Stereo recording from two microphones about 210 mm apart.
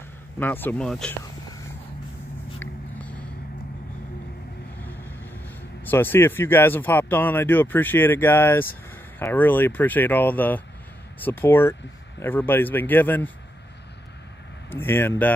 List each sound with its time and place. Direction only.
0.4 s speech: 10° left (ahead or behind)
2.6 s a sound: 5° left (ahead or behind)
5.9 s speech: 10° left (ahead or behind)
14.7 s speech: 10° left (ahead or behind)